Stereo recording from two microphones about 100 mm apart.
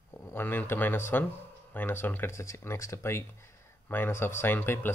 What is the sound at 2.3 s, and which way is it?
Speech, 30° left (ahead or behind).